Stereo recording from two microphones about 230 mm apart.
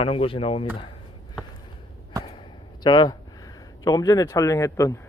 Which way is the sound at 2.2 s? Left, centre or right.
Centre.